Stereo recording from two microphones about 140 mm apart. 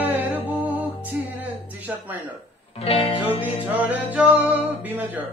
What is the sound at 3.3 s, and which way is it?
Music, 10° right (ahead or behind).